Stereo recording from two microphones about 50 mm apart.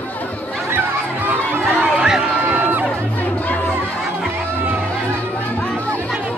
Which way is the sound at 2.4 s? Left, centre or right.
Right.